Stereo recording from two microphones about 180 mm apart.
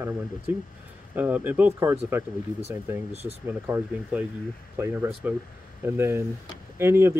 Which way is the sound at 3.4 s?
10° right (ahead or behind).